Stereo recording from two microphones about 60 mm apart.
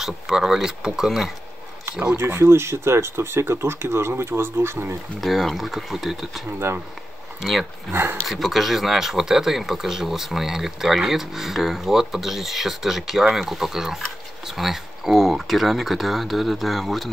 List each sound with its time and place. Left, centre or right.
0.0 s speech: centre
2.1 s speech: right
5.2 s speech: centre
7.9 s speech: right
8.3 s speech: centre